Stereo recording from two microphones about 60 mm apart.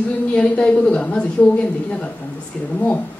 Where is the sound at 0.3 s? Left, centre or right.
Centre.